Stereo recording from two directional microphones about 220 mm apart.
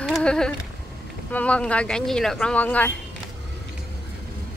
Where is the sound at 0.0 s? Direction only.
5° left (ahead or behind).